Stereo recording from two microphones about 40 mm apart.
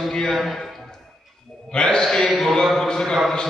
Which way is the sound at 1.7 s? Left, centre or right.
Left.